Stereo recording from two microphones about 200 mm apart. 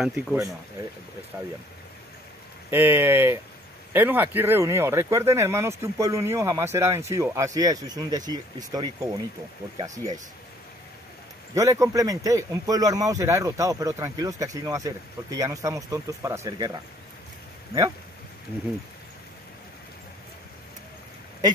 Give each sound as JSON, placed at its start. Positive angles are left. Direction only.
{"t": 0.0, "sound": "a man's voice", "side_deg": -10}
{"t": 2.7, "sound": "a man's voice", "side_deg": -10}
{"t": 11.5, "sound": "a man's voice", "side_deg": -15}